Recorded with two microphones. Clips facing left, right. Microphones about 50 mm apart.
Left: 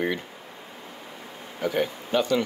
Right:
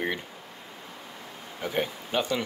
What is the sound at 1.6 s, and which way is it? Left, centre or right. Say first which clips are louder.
Speech: left 4 dB; centre.